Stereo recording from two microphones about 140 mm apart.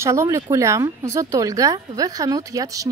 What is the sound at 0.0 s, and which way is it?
A woman's voice, 20° right (ahead or behind).